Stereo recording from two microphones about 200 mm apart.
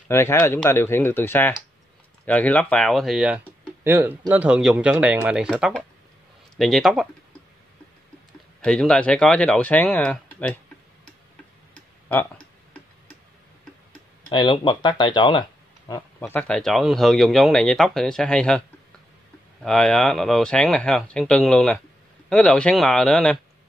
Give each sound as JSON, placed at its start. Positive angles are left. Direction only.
{"t": 0.1, "sound": "speech", "side_deg": 15}
{"t": 8.5, "sound": "speech", "side_deg": 5}
{"t": 11.7, "sound": "a sound", "side_deg": 10}
{"t": 14.3, "sound": "speech", "side_deg": 25}
{"t": 16.2, "sound": "speech", "side_deg": 10}
{"t": 19.6, "sound": "speech", "side_deg": 5}